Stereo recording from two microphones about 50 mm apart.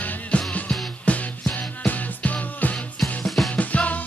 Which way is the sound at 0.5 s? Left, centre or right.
Left.